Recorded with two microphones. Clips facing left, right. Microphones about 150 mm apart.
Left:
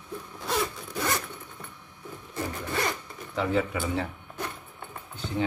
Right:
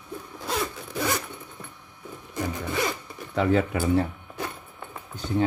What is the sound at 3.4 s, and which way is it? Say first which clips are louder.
Speech: right 4 dB; 60° right (ahead or behind).